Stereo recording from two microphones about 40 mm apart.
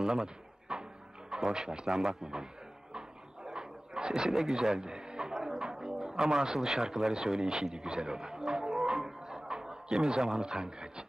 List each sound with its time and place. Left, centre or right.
0.0 s drawer open or close: centre
1.3 s a man's voice: centre
3.4 s a sound: centre
8.6 s music: centre
9.3 s a man's voice: centre